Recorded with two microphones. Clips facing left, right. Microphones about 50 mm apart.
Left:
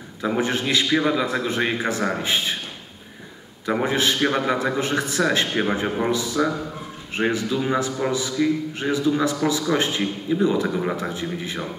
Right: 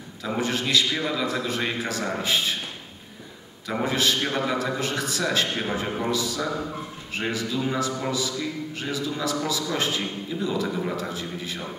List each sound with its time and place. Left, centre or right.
0.4 s a man's voice: left
3.8 s a man's voice: left